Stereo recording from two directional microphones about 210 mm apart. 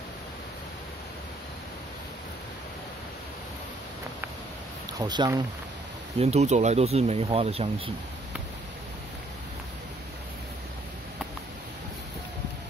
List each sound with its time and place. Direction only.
4.9 s speech: 20° right (ahead or behind)
6.1 s speech: 30° right (ahead or behind)